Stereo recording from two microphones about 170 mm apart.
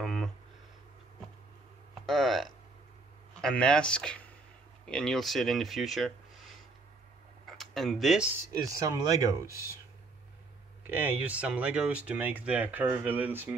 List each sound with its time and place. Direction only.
0.0 s a sound: centre (ahead or behind)
2.0 s a sound: centre (ahead or behind)
3.3 s speech: 5° left (ahead or behind)
7.4 s tick-tock: centre (ahead or behind)
8.5 s speech: 20° right (ahead or behind)
10.8 s speech: 10° right (ahead or behind)